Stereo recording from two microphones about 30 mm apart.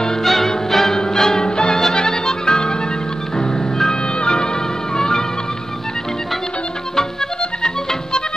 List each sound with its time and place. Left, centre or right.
0.2 s music: centre; by 2.7 s left
4.9 s music: centre